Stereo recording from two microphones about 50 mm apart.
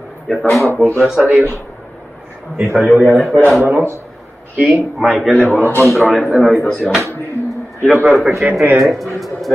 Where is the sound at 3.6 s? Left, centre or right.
Right.